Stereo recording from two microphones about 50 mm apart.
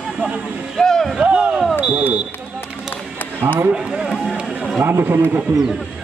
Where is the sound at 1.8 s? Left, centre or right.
Right.